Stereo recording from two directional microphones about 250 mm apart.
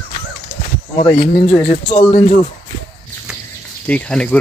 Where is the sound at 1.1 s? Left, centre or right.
Left.